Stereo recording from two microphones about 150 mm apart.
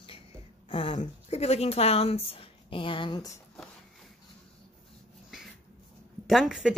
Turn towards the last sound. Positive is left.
turn(degrees=0)  # may be behind; listen again after turning